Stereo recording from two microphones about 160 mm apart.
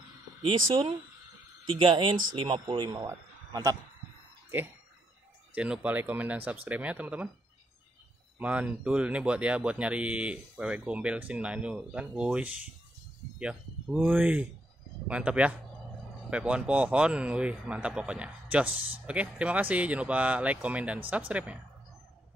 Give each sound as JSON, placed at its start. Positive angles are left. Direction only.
{"t": 0.4, "sound": "speech", "side_deg": -35}
{"t": 5.5, "sound": "speech", "side_deg": -10}
{"t": 8.4, "sound": "speech", "side_deg": -10}